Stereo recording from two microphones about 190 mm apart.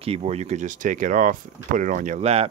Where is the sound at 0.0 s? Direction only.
30° right (ahead or behind).